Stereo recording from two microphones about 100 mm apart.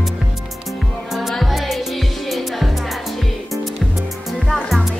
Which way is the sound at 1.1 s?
Centre (ahead or behind).